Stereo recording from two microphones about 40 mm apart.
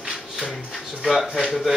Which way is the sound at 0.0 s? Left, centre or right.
Centre.